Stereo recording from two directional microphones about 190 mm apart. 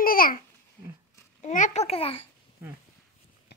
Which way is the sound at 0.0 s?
50° left (ahead or behind).